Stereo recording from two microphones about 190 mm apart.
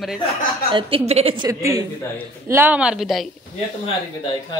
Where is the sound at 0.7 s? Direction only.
30° right (ahead or behind).